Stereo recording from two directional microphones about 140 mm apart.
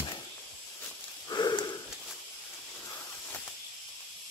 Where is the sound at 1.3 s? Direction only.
30° left (ahead or behind).